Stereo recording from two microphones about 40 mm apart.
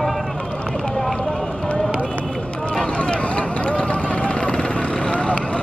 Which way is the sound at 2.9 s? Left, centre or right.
Left.